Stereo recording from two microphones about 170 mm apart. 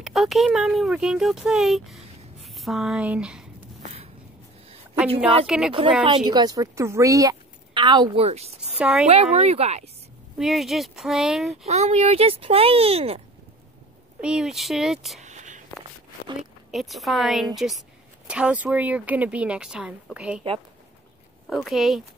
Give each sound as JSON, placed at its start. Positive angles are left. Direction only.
{"t": 0.0, "sound": "speech", "side_deg": 0}
{"t": 5.5, "sound": "speech", "side_deg": -5}
{"t": 6.0, "sound": "speech", "side_deg": -25}
{"t": 8.7, "sound": "speech", "side_deg": -10}
{"t": 9.0, "sound": "speech", "side_deg": -40}
{"t": 10.3, "sound": "speech", "side_deg": 0}
{"t": 11.6, "sound": "speech", "side_deg": -40}
{"t": 14.2, "sound": "speech", "side_deg": -5}
{"t": 15.2, "sound": "a sound", "side_deg": -45}
{"t": 16.7, "sound": "speech", "side_deg": 0}
{"t": 21.5, "sound": "speech", "side_deg": 0}